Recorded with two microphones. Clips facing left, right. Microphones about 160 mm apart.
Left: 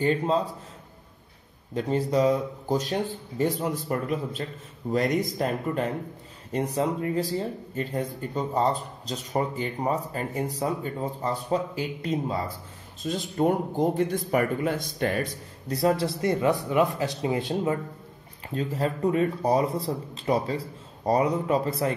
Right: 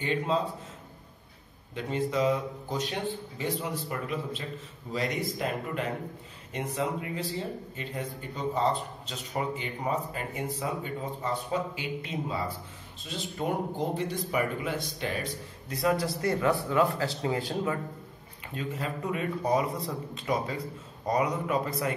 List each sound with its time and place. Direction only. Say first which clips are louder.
0.0 s speech: left 5 dB; 40° left (ahead or behind)
1.7 s speech: left 5 dB; 40° left (ahead or behind)
15.7 s speech: left 4 dB; 30° left (ahead or behind)
18.5 s speech: left 6 dB; 35° left (ahead or behind)